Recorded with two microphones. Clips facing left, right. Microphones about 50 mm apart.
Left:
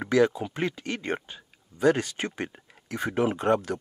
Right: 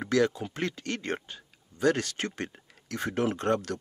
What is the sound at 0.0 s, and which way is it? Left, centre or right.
Speech, centre.